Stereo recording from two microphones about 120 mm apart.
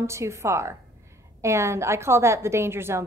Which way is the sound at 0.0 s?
25° right (ahead or behind).